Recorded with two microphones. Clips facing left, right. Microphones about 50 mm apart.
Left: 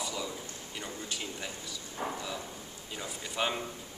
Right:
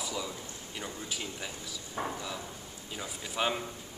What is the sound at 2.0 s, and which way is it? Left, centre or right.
Speech, right.